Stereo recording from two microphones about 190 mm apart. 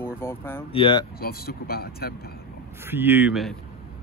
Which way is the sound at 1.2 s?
55° left (ahead or behind).